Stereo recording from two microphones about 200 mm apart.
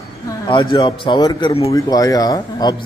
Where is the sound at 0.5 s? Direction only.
25° left (ahead or behind).